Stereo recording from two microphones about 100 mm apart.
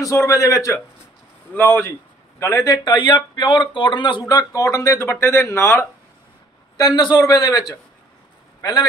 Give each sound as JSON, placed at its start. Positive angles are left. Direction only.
{"t": 0.0, "sound": "a man's voice", "side_deg": 30}
{"t": 1.5, "sound": "a man's voice", "side_deg": 20}
{"t": 2.6, "sound": "speech", "side_deg": 45}
{"t": 4.3, "sound": "a man's voice", "side_deg": 35}
{"t": 6.8, "sound": "a man's voice", "side_deg": 45}